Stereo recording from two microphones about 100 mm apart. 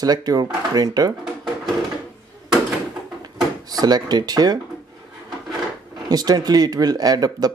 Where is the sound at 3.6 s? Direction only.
40° right (ahead or behind).